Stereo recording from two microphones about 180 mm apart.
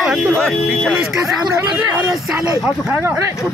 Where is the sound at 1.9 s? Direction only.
15° right (ahead or behind).